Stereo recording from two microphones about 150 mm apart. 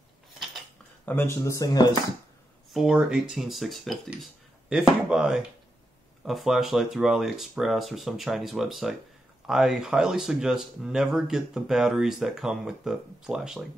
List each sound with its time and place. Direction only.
1.0 s speech: 15° left (ahead or behind)
2.7 s speech: centre (ahead or behind)